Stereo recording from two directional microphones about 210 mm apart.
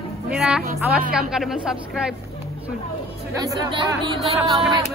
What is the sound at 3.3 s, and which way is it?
Speech, 15° right (ahead or behind).